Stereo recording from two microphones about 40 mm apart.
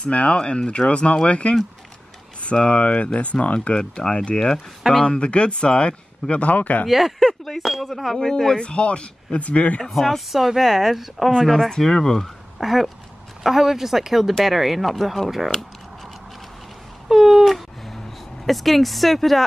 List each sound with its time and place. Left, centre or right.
0.1 s speech: left
6.9 s speech: centre
8.5 s speech: left
9.8 s speech: centre
11.3 s speech: centre
12.5 s speech: centre
17.1 s a sound: centre
17.9 s speech: centre